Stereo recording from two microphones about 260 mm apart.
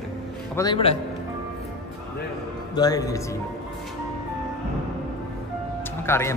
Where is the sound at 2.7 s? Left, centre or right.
Centre.